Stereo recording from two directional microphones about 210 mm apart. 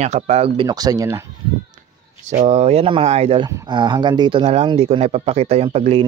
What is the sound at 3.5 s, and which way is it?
Speech, 15° right (ahead or behind).